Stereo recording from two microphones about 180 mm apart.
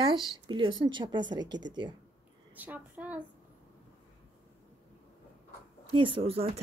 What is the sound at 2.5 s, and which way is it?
Speech, 10° right (ahead or behind).